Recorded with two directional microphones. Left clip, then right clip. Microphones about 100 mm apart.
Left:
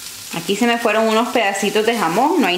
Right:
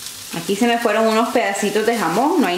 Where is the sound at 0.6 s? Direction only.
15° left (ahead or behind).